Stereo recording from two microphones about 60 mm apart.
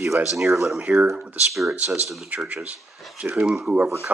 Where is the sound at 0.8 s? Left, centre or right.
Right.